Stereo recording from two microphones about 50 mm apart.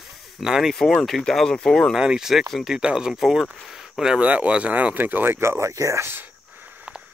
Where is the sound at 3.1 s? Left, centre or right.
Centre.